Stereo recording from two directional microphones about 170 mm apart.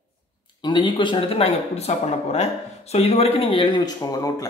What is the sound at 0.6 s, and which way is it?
Speech, 25° left (ahead or behind).